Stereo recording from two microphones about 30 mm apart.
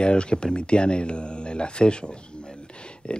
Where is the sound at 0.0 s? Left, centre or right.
Left.